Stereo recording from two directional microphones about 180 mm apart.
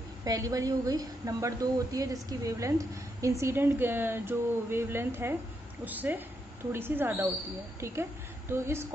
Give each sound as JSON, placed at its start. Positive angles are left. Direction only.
{"t": 0.2, "sound": "a woman's voice", "side_deg": -20}